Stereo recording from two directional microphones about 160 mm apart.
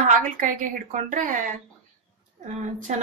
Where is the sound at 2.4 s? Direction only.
50° right (ahead or behind).